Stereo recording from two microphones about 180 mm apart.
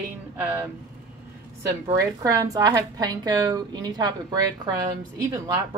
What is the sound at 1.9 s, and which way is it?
A woman's voice, 20° right (ahead or behind).